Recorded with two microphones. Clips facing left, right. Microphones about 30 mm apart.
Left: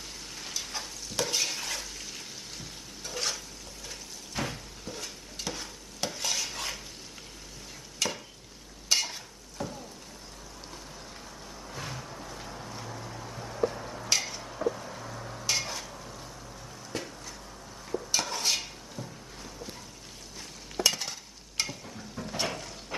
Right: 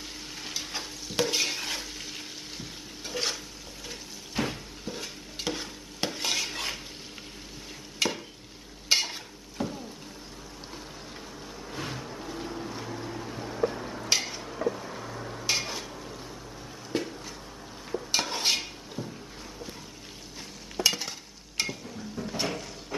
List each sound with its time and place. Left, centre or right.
0.4 s stir: centre
8.0 s stir: right
11.8 s vehicle: centre
16.9 s a sound: right
18.1 s dishes: right
20.8 s stir: centre
21.5 s a sound: centre